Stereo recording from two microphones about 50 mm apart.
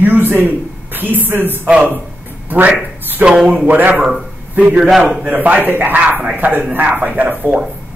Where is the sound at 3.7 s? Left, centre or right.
Right.